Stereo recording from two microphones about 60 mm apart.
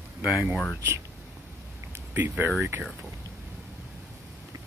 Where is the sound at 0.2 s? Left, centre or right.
Centre.